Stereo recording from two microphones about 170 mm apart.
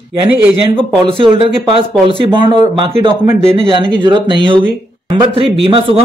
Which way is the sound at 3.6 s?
30° right (ahead or behind).